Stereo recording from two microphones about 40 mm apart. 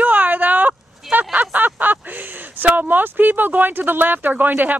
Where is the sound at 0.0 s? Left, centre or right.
Right.